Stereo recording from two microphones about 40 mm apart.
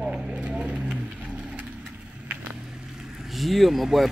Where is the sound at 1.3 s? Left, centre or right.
Right.